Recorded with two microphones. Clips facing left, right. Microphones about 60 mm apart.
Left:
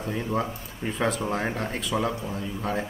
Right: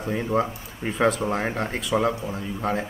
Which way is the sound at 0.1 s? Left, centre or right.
Centre.